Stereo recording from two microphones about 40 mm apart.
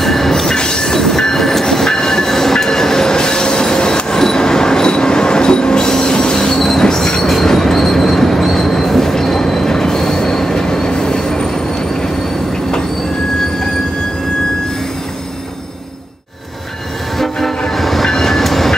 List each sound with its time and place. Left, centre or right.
0.0 s train: centre
0.6 s train: centre
6.5 s train: centre
17.2 s train: centre